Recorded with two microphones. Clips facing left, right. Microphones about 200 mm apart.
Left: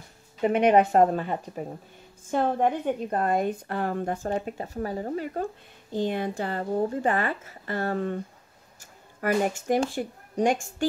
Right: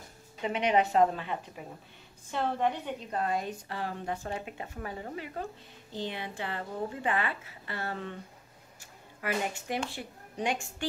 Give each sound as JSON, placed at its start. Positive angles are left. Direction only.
{"t": 0.4, "sound": "a woman's voice", "side_deg": 50}
{"t": 9.2, "sound": "a woman's voice", "side_deg": 45}